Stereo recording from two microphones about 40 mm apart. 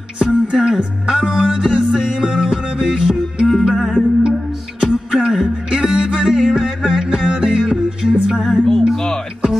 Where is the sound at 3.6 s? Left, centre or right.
Centre.